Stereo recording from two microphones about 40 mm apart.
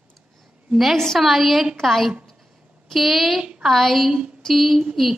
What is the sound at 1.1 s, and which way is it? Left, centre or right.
A woman's voice, centre.